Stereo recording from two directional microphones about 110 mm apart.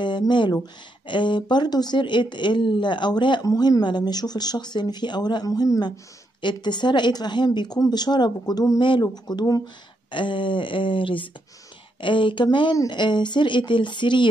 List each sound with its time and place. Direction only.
0.3 s speech: 45° left (ahead or behind)
3.4 s a woman's voice: 35° left (ahead or behind)